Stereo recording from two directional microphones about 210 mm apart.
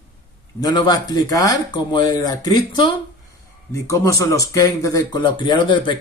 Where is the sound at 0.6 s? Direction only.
20° left (ahead or behind).